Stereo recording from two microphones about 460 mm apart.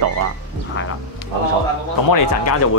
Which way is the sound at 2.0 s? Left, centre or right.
Left.